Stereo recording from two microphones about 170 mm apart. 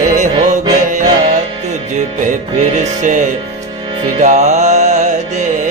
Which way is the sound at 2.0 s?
45° right (ahead or behind).